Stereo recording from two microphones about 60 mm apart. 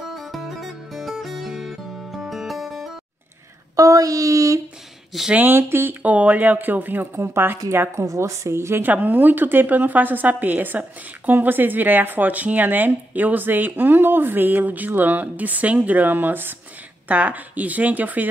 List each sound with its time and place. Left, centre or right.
0.1 s music: centre
3.7 s child singing: right
5.3 s a woman's voice: right
6.0 s a woman's voice: right
8.8 s a woman's voice: right